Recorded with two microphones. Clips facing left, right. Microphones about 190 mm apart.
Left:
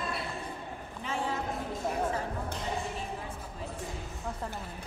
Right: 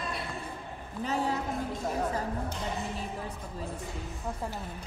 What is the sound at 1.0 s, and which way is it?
Speech, 40° right (ahead or behind).